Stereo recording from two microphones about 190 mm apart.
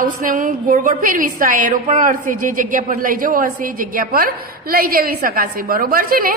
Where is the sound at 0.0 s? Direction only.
45° right (ahead or behind).